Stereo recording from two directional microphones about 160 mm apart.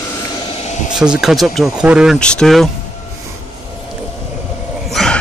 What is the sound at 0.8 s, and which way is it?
Speech, 5° right (ahead or behind).